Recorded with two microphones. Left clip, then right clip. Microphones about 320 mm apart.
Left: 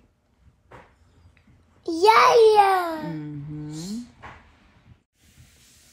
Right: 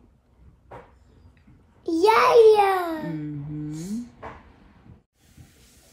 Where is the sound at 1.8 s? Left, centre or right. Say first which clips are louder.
Left 2 dB; left.